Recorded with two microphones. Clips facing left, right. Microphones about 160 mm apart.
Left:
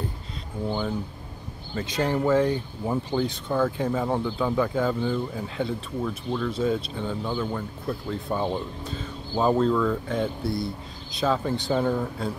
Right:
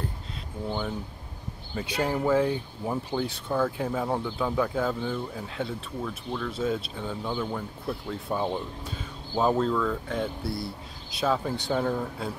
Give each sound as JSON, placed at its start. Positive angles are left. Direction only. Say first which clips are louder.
{"t": 0.7, "sound": "speech", "louder": "left 3 dB", "side_deg": 5}
{"t": 1.8, "sound": "speech", "louder": "left 2 dB", "side_deg": -5}